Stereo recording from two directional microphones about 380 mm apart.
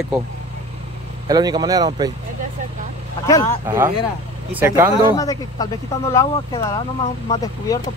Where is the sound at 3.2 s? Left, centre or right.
Centre.